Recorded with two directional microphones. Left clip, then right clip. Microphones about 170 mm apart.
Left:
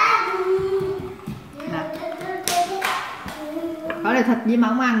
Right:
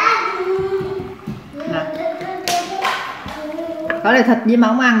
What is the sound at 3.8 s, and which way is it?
Speech, 15° right (ahead or behind).